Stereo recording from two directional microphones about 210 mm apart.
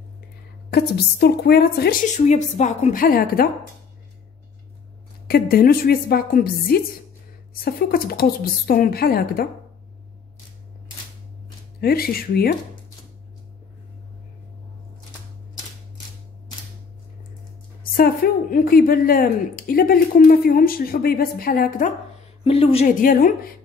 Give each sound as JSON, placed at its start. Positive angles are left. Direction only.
{"t": 0.7, "sound": "a woman's voice", "side_deg": 50}
{"t": 5.3, "sound": "a woman's voice", "side_deg": 45}
{"t": 11.8, "sound": "a woman's voice", "side_deg": 45}
{"t": 17.9, "sound": "a woman's voice", "side_deg": 45}
{"t": 22.4, "sound": "a woman's voice", "side_deg": 25}